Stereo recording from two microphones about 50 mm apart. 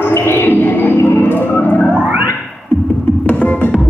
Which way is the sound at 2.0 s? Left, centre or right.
Right.